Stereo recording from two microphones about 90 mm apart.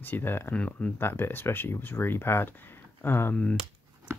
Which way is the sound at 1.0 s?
25° left (ahead or behind).